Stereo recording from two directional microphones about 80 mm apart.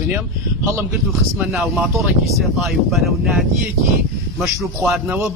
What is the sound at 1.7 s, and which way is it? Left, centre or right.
Speech, centre.